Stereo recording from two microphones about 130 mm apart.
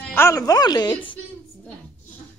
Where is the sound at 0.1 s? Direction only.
20° left (ahead or behind).